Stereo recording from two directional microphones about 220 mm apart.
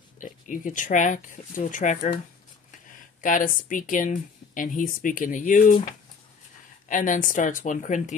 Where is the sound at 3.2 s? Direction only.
35° left (ahead or behind).